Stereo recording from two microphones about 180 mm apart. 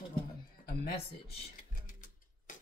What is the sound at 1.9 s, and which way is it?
Music, 45° left (ahead or behind).